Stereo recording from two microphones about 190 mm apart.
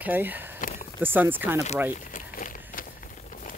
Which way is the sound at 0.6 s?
45° left (ahead or behind).